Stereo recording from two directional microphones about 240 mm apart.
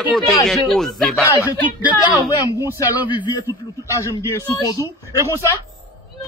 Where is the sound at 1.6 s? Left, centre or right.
Centre.